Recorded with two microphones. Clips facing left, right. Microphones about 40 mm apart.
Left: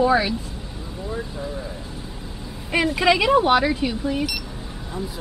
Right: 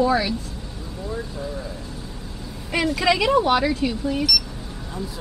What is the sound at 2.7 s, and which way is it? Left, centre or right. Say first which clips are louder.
Speech: left 2 dB; centre.